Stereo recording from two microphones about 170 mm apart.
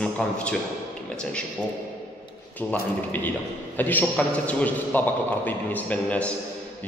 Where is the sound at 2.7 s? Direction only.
10° left (ahead or behind).